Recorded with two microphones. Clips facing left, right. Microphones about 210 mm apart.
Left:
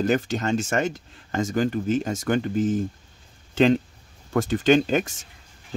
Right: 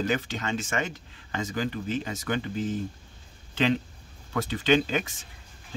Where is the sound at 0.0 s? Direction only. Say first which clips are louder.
Left 6 dB; 45° left (ahead or behind).